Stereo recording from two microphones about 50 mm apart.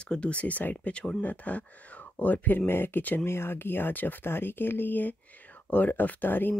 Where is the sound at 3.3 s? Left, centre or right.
Left.